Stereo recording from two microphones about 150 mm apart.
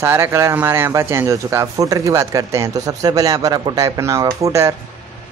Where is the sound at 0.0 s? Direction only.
15° right (ahead or behind).